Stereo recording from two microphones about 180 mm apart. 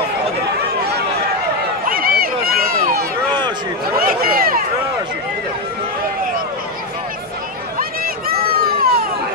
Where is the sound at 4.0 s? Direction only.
55° right (ahead or behind).